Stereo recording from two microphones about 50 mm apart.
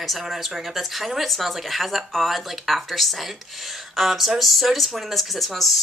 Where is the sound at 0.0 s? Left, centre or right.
Centre.